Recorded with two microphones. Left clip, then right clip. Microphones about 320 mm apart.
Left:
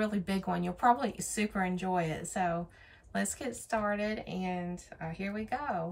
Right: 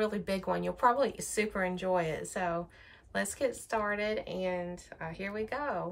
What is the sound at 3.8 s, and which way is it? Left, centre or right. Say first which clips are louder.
A woman's voice: right 3 dB; centre.